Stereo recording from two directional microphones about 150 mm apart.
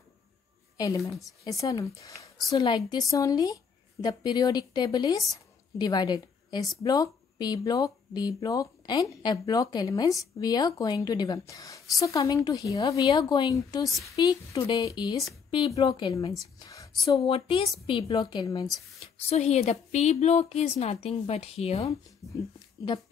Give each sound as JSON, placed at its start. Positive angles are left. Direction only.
{"t": 0.7, "sound": "a woman's voice", "side_deg": 25}
{"t": 5.3, "sound": "a sound", "side_deg": 25}
{"t": 6.8, "sound": "a woman's voice", "side_deg": 25}
{"t": 17.3, "sound": "a woman's voice", "side_deg": 35}
{"t": 19.1, "sound": "speech", "side_deg": 45}